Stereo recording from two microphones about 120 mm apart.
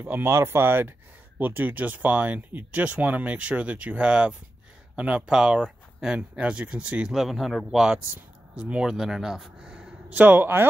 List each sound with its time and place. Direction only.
0.0 s speech: 20° right (ahead or behind)